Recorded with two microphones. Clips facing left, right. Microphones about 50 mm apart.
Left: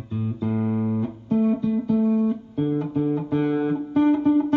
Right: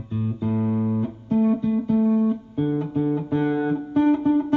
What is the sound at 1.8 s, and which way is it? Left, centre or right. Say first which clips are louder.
Music: right 1 dB; centre.